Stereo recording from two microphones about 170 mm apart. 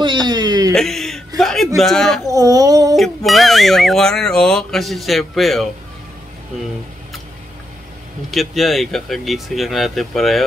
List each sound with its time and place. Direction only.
0.0 s a sound: 25° right (ahead or behind)
0.7 s speech: centre (ahead or behind)
2.2 s speech: 20° right (ahead or behind)
3.3 s speech: centre (ahead or behind)
8.3 s speech: centre (ahead or behind)